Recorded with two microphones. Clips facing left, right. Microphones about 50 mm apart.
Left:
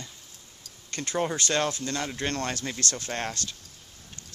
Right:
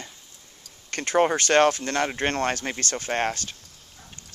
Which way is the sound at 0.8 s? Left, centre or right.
Right.